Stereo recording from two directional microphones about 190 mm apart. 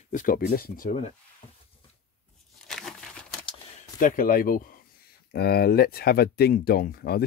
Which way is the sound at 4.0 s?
45° left (ahead or behind).